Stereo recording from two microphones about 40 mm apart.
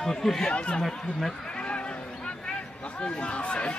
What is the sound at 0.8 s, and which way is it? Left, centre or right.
Speech, centre.